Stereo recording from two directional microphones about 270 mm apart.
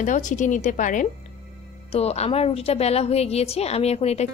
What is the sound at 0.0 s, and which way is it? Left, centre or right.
A woman's voice, left.